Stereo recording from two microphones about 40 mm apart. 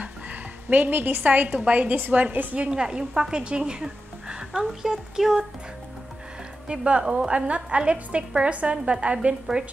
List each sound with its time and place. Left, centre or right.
0.0 s a woman's voice: right
2.0 s a woman's voice: right
2.7 s speech: centre
4.5 s speech: centre
6.7 s a woman's voice: right